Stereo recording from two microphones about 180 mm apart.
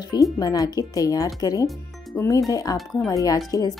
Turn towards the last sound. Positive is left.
turn(degrees=20)  # may be behind; listen again after turning